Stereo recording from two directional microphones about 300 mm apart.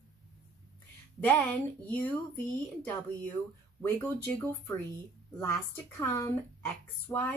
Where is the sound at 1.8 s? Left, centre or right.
Centre.